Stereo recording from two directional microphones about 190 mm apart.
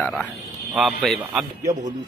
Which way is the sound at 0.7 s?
Centre (ahead or behind).